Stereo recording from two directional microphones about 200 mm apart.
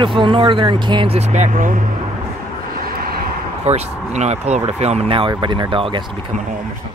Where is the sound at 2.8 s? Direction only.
45° right (ahead or behind).